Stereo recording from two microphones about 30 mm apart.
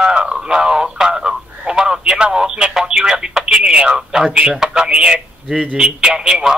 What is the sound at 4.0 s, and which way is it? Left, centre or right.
Speech, right.